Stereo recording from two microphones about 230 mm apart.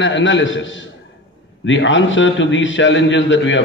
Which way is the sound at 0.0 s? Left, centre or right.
Left.